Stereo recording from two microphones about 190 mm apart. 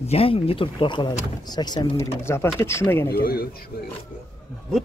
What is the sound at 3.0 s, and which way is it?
Speech, 50° left (ahead or behind).